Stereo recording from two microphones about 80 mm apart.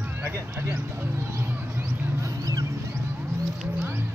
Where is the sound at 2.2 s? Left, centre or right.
Right.